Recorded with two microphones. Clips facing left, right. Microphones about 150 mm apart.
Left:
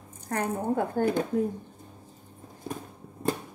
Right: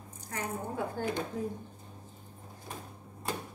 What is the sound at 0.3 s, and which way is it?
Speech, 55° left (ahead or behind).